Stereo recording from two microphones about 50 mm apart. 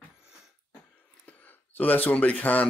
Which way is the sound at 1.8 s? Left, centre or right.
Left.